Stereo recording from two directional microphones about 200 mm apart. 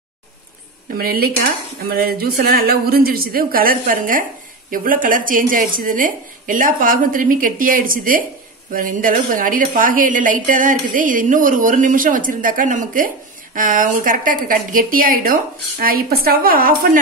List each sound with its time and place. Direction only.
0.9 s a woman's voice: 50° right (ahead or behind)